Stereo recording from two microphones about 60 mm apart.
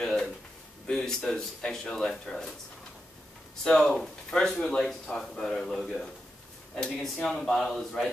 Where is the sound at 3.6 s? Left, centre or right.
Centre.